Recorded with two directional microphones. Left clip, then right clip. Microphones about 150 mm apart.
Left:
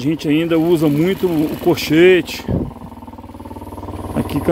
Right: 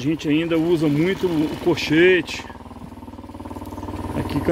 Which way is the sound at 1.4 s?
90° left.